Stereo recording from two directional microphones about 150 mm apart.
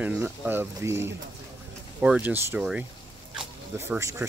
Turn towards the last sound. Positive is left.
turn(degrees=-15)  # may be behind; listen again after turning